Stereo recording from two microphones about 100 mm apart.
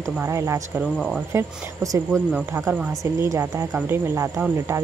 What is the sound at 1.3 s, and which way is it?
Speech, 30° right (ahead or behind).